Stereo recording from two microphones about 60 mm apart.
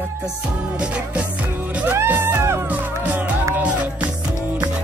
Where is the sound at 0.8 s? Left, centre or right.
Centre.